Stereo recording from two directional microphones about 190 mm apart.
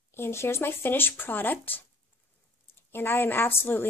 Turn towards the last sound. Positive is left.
turn(degrees=10)  # may be behind; listen again after turning